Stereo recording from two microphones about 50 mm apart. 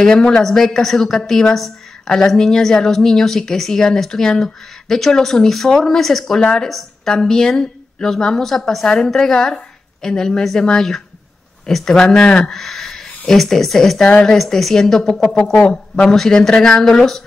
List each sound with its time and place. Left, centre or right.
0.0 s a woman's voice: centre
6.7 s a woman's voice: centre
12.4 s a sound: centre
13.3 s a woman's voice: centre
14.3 s a woman's voice: centre